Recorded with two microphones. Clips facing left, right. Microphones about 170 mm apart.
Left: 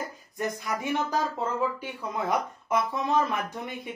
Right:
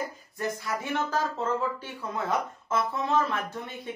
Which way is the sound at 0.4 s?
15° left (ahead or behind).